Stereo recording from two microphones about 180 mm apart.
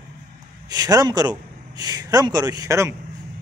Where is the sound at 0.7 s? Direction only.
20° right (ahead or behind).